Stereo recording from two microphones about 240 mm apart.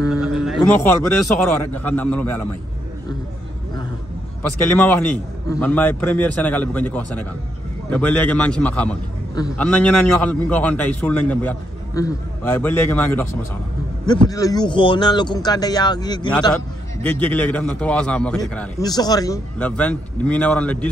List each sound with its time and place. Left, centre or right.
0.3 s a sound: centre
1.6 s a man's voice: centre
4.4 s a man's voice: centre
17.0 s speech: centre
18.8 s speech: centre